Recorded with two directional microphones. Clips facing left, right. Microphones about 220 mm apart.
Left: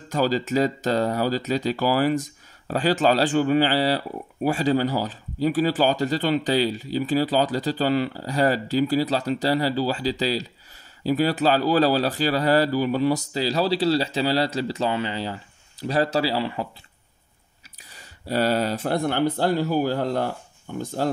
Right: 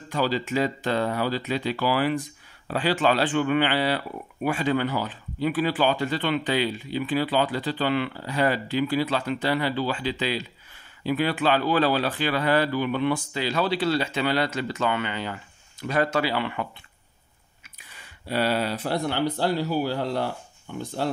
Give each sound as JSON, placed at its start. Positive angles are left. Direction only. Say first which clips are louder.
{"t": 0.1, "sound": "speech", "louder": "left 3 dB", "side_deg": 40}
{"t": 17.9, "sound": "speech", "louder": "left 3 dB", "side_deg": 40}